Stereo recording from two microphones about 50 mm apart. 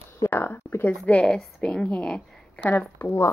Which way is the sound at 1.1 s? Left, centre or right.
Left.